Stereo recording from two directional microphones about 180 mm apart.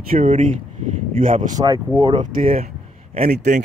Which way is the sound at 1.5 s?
20° right (ahead or behind).